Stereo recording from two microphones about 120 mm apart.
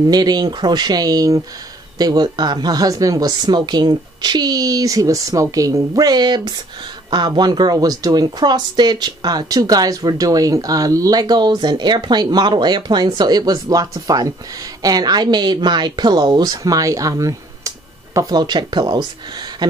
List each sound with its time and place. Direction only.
0.1 s speech: 35° right (ahead or behind)